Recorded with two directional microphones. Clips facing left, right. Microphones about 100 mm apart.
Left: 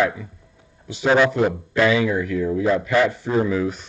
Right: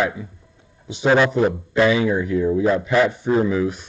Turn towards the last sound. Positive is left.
turn(degrees=-5)  # may be behind; listen again after turning